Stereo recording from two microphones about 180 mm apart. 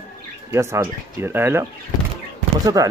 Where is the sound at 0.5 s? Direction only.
15° right (ahead or behind).